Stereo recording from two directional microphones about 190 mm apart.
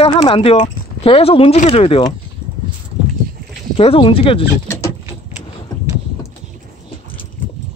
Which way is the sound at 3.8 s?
30° left (ahead or behind).